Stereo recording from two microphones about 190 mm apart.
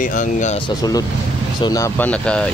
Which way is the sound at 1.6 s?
15° left (ahead or behind).